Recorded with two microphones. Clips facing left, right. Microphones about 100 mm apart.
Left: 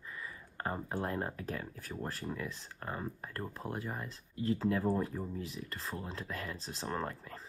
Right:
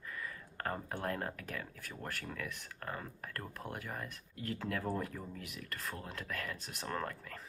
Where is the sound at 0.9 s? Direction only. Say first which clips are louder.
Left 2 dB; 25° left (ahead or behind).